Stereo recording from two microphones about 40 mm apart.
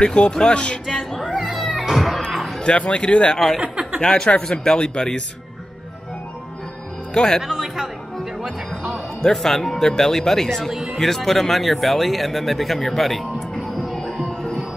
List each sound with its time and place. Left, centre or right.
0.0 s speech: left
0.9 s music: centre
1.4 s cat: centre
2.6 s speech: left
3.6 s chuckle: right
4.0 s speech: centre
7.2 s speech: centre
7.4 s speech: centre
8.5 s speech: centre
9.2 s speech: centre
13.7 s music: centre
14.2 s music: left